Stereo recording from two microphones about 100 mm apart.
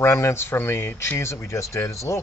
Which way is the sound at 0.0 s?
25° left (ahead or behind).